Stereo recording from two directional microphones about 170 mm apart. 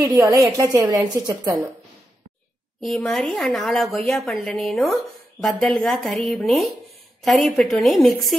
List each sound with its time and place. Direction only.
0.0 s a woman's voice: 25° right (ahead or behind)
2.8 s speech: centre (ahead or behind)